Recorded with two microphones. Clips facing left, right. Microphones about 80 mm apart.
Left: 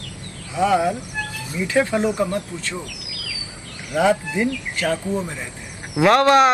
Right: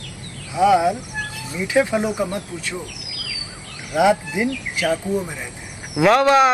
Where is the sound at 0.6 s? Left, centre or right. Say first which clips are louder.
Right 3 dB; centre.